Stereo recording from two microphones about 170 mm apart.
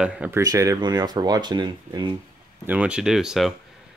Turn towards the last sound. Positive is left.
turn(degrees=0)  # may be behind; listen again after turning